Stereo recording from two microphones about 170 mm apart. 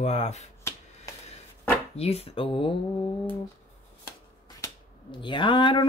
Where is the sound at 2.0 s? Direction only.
35° left (ahead or behind).